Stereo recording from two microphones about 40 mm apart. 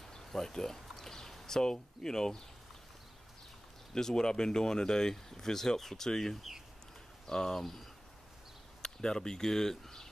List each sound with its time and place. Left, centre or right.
0.0 s a sound: centre
3.9 s speech: centre
8.8 s speech: centre